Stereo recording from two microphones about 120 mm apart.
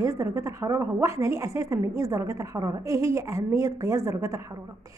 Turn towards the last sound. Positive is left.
turn(degrees=-25)  # may be behind; listen again after turning